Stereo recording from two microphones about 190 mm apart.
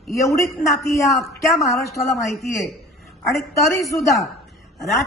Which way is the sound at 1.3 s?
15° left (ahead or behind).